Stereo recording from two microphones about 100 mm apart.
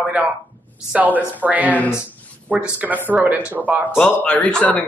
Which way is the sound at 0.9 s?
15° right (ahead or behind).